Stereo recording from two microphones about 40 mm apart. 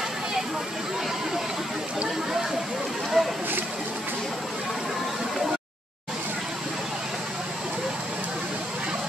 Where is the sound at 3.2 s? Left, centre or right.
Centre.